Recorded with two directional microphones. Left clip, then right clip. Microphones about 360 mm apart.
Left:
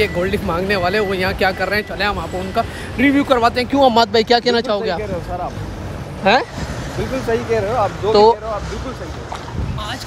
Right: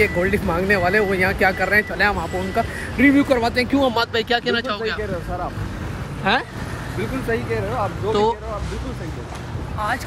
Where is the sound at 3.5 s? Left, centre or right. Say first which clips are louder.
Left 5 dB; centre.